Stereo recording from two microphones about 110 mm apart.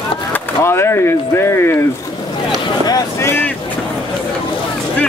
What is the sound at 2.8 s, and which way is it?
Vehicle, 35° left (ahead or behind).